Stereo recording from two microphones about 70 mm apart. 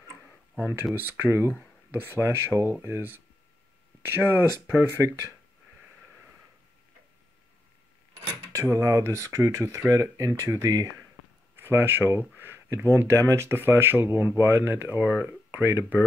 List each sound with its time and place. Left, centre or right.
0.9 s speech: right
8.6 s speech: right
11.6 s speech: right
12.7 s speech: right
13.5 s speech: right